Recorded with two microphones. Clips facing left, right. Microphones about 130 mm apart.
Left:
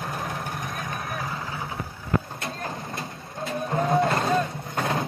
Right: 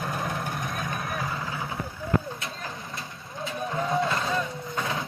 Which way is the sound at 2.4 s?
50° left (ahead or behind).